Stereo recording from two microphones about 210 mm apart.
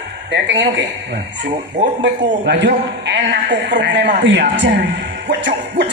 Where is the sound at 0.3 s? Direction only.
55° right (ahead or behind).